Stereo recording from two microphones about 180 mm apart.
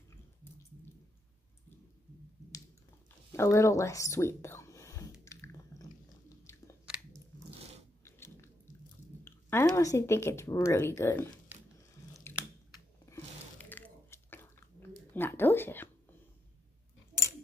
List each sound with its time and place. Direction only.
3.3 s speech: 15° left (ahead or behind)
5.2 s biting: 15° left (ahead or behind)
8.0 s biting: 15° left (ahead or behind)
9.2 s speech: 15° left (ahead or behind)
12.3 s chewing: 15° left (ahead or behind)
13.0 s a sound: 15° left (ahead or behind)